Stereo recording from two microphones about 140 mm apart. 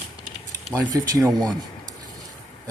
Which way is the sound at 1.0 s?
25° right (ahead or behind).